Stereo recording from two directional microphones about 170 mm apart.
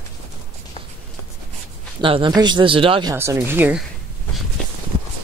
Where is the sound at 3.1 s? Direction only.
15° right (ahead or behind).